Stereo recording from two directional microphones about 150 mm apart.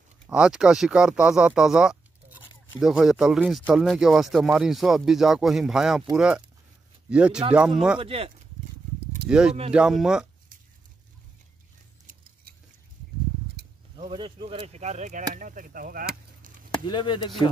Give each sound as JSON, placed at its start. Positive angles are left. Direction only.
{"t": 0.3, "sound": "speech", "side_deg": -5}
{"t": 8.0, "sound": "speech", "side_deg": -40}
{"t": 9.3, "sound": "speech", "side_deg": -5}
{"t": 13.9, "sound": "speech", "side_deg": -35}
{"t": 15.3, "sound": "speech", "side_deg": -65}
{"t": 16.8, "sound": "speech", "side_deg": 30}